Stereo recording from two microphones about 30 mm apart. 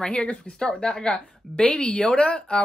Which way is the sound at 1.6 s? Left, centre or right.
Left.